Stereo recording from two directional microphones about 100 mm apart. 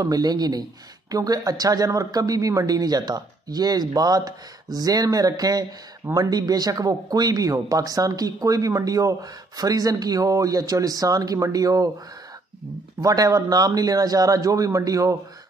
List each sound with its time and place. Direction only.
0.0 s speech: 40° right (ahead or behind)
13.0 s speech: 35° right (ahead or behind)